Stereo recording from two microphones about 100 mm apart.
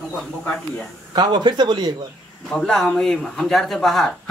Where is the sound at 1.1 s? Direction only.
45° right (ahead or behind).